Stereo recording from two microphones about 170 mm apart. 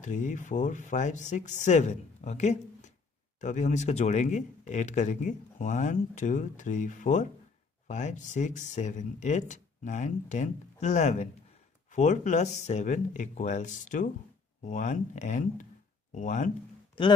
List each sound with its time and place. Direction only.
0.0 s speech: 45° left (ahead or behind)